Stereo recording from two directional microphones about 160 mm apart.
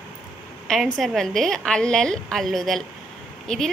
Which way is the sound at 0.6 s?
Centre (ahead or behind).